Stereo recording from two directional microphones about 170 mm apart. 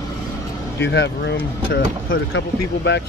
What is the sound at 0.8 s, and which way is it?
Speech, 90° left.